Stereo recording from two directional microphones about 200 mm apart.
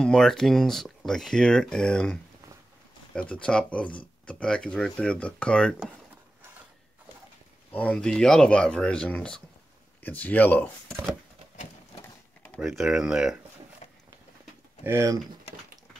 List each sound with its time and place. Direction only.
0.0 s speech: 5° left (ahead or behind)
3.2 s speech: 5° left (ahead or behind)
7.7 s speech: 5° left (ahead or behind)
12.5 s speech: centre (ahead or behind)
13.8 s a sound: 35° left (ahead or behind)
14.8 s speech: 15° right (ahead or behind)